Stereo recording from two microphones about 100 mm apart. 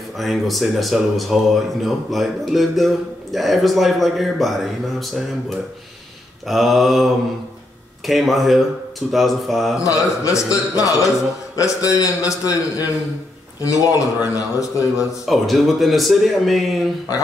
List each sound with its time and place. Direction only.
0.2 s speech: centre (ahead or behind)
6.4 s speech: centre (ahead or behind)
8.1 s speech: centre (ahead or behind)
9.8 s a man's voice: 35° left (ahead or behind)
15.2 s speech: centre (ahead or behind)